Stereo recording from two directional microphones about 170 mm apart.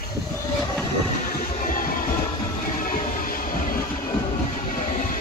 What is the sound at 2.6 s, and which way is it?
Music, 55° left (ahead or behind).